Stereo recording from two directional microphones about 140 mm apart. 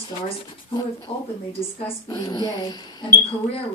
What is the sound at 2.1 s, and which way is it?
Speech, 25° left (ahead or behind).